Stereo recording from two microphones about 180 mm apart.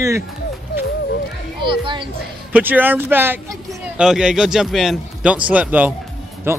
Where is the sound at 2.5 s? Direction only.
10° right (ahead or behind).